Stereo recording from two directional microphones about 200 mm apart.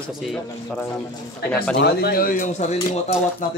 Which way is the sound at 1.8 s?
55° left (ahead or behind).